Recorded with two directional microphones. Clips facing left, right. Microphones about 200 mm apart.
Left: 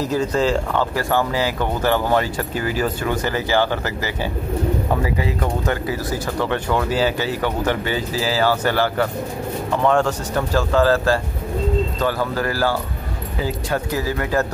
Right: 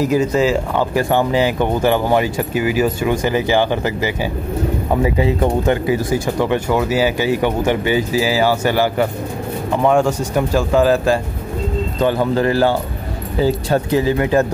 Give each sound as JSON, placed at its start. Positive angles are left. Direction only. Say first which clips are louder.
{"t": 0.0, "sound": "speech", "louder": "right 4 dB", "side_deg": -10}